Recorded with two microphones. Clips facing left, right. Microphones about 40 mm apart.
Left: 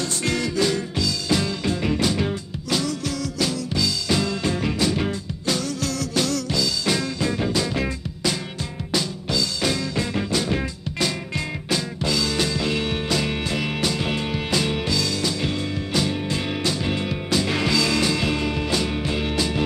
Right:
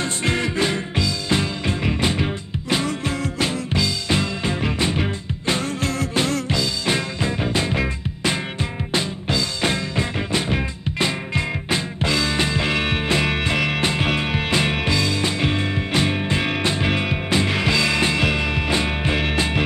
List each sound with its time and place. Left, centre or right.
0.0 s music: right
8.9 s music: right